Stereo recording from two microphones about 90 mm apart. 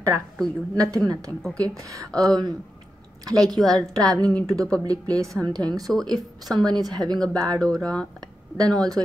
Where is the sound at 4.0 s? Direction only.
40° right (ahead or behind).